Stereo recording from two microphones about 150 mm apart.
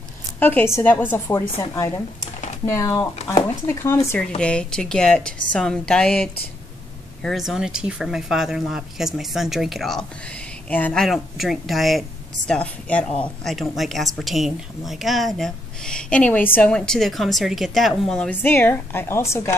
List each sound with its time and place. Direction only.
0.4 s a woman's voice: 15° left (ahead or behind)